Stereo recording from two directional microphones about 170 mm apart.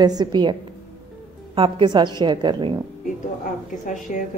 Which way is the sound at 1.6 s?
30° right (ahead or behind).